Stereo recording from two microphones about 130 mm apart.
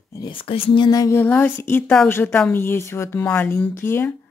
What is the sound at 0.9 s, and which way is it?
Speech, 25° left (ahead or behind).